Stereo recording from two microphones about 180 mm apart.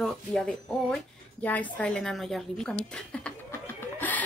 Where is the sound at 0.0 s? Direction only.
5° left (ahead or behind).